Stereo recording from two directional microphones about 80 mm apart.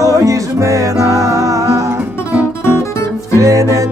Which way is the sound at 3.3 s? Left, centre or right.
Right.